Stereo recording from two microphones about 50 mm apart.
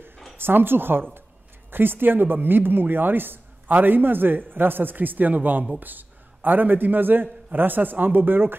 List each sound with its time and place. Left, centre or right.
0.4 s a man's voice: right